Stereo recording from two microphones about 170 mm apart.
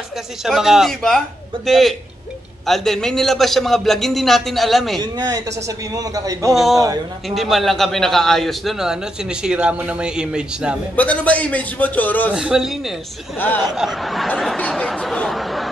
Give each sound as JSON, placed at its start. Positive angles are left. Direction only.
{"t": 0.4, "sound": "a man's voice", "side_deg": 0}
{"t": 5.0, "sound": "a man's voice", "side_deg": -20}
{"t": 6.5, "sound": "a man's voice", "side_deg": 0}
{"t": 11.0, "sound": "a man's voice", "side_deg": 10}
{"t": 12.4, "sound": "a man's voice", "side_deg": -5}